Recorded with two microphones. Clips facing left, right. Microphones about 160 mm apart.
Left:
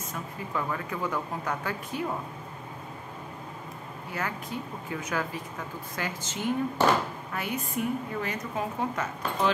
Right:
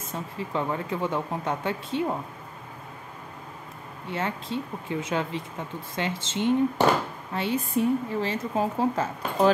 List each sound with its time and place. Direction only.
0.1 s a woman's voice: 25° right (ahead or behind)
4.1 s a woman's voice: 25° right (ahead or behind)